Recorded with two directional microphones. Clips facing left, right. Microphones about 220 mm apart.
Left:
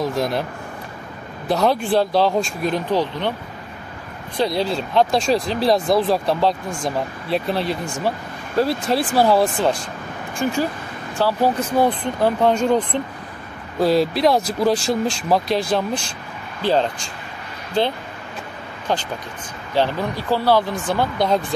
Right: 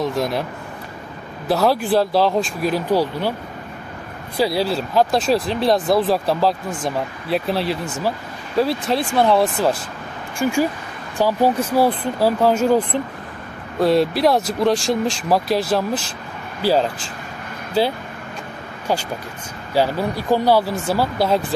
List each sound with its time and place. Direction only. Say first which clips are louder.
0.0 s speech: even; centre (ahead or behind)
1.5 s speech: right 1 dB; 5° right (ahead or behind)
4.4 s speech: right 1 dB; 5° right (ahead or behind)
19.7 s speech: right 1 dB; 10° right (ahead or behind)